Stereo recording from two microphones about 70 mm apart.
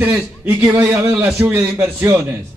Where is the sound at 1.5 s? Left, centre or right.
Right.